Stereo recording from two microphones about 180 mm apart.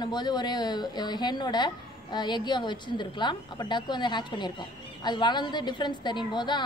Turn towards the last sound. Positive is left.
turn(degrees=25)  # may be behind; listen again after turning